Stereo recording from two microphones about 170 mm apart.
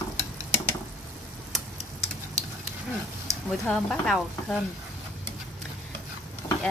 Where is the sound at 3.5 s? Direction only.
5° left (ahead or behind).